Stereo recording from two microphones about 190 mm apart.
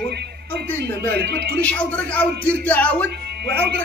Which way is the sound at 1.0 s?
60° right (ahead or behind).